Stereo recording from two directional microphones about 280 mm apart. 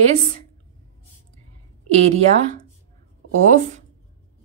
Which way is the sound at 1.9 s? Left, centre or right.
Right.